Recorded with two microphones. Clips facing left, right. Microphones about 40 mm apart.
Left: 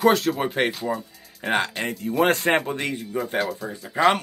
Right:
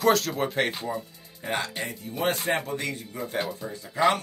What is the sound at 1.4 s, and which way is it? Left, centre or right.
Speech, left.